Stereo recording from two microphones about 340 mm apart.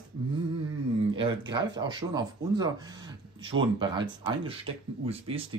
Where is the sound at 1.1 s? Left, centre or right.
Centre.